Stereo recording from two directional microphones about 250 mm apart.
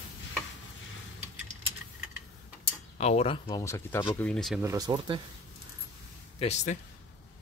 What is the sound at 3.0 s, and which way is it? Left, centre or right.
Speech, left.